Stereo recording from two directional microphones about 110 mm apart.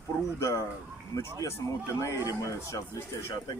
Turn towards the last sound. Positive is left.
turn(degrees=40)  # may be behind; listen again after turning